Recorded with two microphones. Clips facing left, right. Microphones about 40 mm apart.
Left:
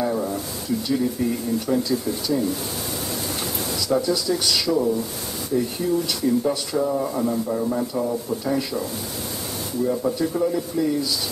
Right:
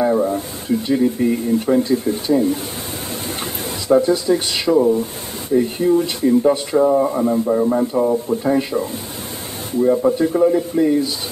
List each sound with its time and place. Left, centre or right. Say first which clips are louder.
0.0 s speech: right 7 dB; right
3.9 s speech: right 8 dB; right